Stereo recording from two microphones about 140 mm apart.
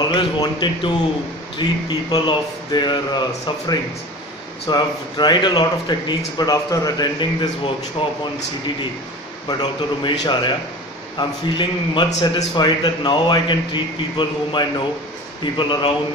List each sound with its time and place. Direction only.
0.1 s a man's voice: 35° left (ahead or behind)
9.5 s a man's voice: 35° left (ahead or behind)